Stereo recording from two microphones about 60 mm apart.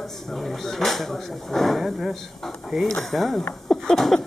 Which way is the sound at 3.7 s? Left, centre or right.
Centre.